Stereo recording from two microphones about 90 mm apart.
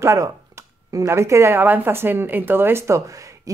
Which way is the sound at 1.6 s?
20° right (ahead or behind).